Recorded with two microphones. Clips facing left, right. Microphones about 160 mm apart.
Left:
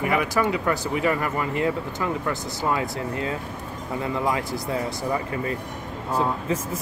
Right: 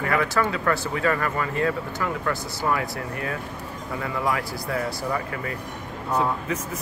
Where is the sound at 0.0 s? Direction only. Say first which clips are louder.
Left 1 dB; 15° left (ahead or behind).